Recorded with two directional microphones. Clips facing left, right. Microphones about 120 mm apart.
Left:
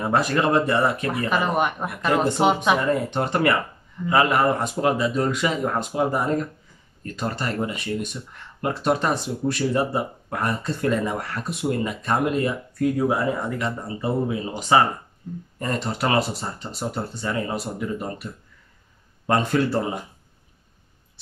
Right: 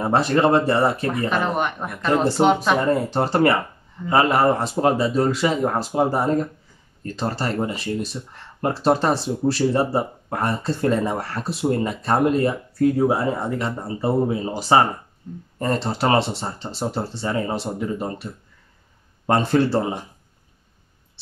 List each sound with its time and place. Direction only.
0.0 s speech: 30° right (ahead or behind)
1.3 s speech: 5° left (ahead or behind)
2.9 s speech: 30° right (ahead or behind)